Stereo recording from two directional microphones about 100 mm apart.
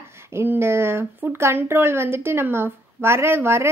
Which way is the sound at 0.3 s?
25° right (ahead or behind).